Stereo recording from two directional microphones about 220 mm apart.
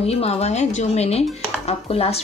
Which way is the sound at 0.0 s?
30° left (ahead or behind).